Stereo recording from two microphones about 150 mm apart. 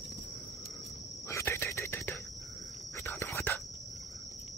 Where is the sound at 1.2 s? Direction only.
15° left (ahead or behind).